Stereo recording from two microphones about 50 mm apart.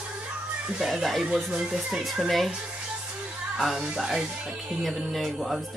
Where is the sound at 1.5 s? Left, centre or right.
Right.